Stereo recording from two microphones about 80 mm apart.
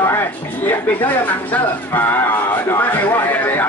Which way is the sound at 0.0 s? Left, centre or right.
Left.